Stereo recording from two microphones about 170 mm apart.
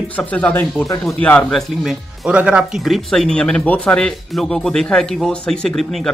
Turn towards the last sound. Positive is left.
turn(degrees=0)  # may be behind; listen again after turning